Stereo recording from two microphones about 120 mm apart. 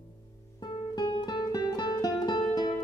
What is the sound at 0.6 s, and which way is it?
Music, 35° left (ahead or behind).